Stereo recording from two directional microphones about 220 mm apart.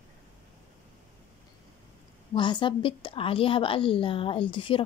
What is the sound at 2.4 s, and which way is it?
A woman's voice, 20° left (ahead or behind).